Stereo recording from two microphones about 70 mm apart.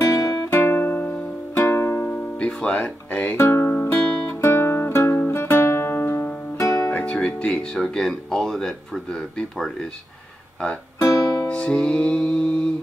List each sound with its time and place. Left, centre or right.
0.0 s music: left
0.6 s music: left
1.5 s music: left; by 2.7 s centre
2.8 s speech: centre
3.3 s speech: left
3.7 s music: left
4.4 s music: left
6.6 s music: left
6.9 s music: left
7.2 s speech: centre
11.4 s speech: centre